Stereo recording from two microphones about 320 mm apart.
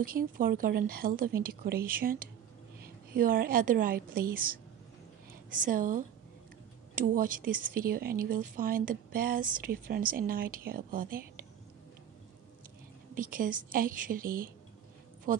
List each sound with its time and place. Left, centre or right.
0.0 s speech: right
13.1 s speech: right